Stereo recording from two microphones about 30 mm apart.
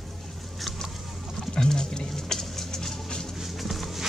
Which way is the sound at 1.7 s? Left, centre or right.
Left.